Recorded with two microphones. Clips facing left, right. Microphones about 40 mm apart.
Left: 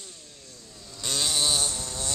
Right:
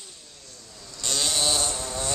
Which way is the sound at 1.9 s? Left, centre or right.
Right.